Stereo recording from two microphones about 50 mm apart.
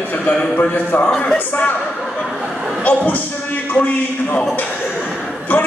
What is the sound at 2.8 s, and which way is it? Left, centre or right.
Speech, left.